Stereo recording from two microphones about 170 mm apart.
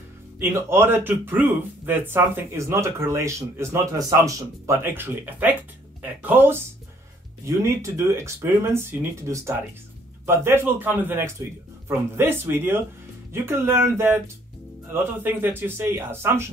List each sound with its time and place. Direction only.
0.4 s speech: 15° right (ahead or behind)